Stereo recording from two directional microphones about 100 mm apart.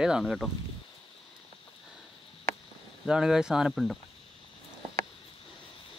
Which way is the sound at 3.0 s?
5° right (ahead or behind).